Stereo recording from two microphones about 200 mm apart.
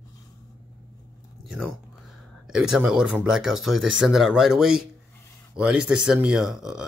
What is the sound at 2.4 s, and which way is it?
Speech, 5° right (ahead or behind).